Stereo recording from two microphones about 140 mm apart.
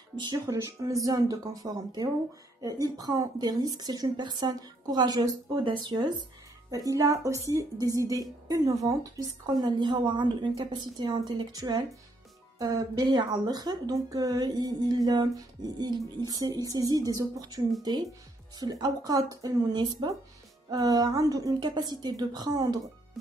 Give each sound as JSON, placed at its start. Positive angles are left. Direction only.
{"t": 0.1, "sound": "speech", "side_deg": -35}
{"t": 0.5, "sound": "speech", "side_deg": -20}